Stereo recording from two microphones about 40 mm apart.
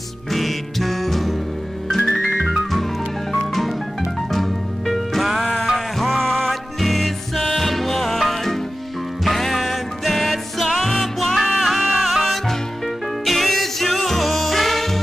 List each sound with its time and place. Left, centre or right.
0.3 s music: centre
4.3 s music: centre